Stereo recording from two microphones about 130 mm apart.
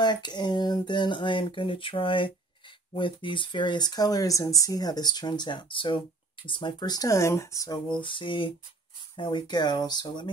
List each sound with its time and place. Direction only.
0.0 s speech: 35° left (ahead or behind)
8.0 s speech: 40° left (ahead or behind)